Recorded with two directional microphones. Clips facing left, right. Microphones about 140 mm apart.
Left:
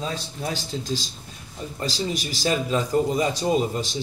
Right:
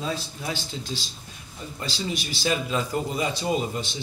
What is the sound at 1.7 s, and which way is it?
A man's voice, 40° left (ahead or behind).